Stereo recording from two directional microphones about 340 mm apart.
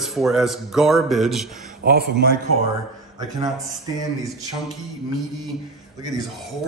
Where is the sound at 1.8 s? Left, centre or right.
Right.